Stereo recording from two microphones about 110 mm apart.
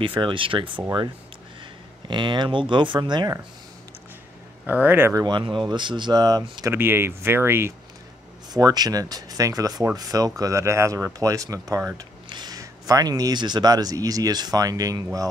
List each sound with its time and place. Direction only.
0.0 s speech: 50° right (ahead or behind)
2.0 s speech: 45° right (ahead or behind)
4.6 s speech: 15° right (ahead or behind)
5.1 s speech: 40° right (ahead or behind)
6.7 s speech: 20° right (ahead or behind)
8.5 s speech: 35° right (ahead or behind)